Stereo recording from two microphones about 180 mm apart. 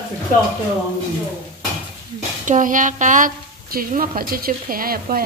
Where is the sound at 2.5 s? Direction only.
45° right (ahead or behind).